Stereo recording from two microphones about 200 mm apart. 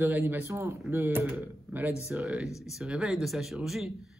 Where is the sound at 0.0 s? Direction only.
10° right (ahead or behind).